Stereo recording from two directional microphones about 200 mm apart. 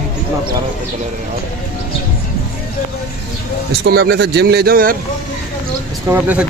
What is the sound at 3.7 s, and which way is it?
Speech, 55° right (ahead or behind).